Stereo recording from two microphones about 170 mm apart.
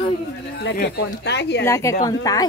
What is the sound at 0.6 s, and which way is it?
Speech, 85° left.